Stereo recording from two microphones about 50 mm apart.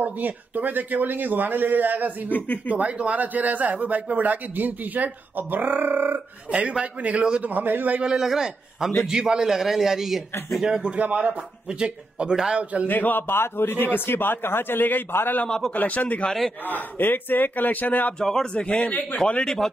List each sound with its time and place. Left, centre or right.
0.0 s a man's voice: right
2.3 s a man's voice: left
2.7 s a man's voice: right
6.8 s a man's voice: right
7.4 s a man's voice: right
8.0 s a man's voice: centre
10.6 s a man's voice: centre
11.0 s a man's voice: right
12.8 s a man's voice: left
13.3 s a man's voice: left
15.4 s a man's voice: centre
15.7 s a man's voice: left
18.2 s a man's voice: centre; by 19.0 s left
19.2 s a man's voice: centre